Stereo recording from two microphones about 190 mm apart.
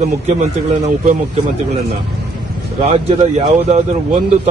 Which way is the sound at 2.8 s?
35° right (ahead or behind).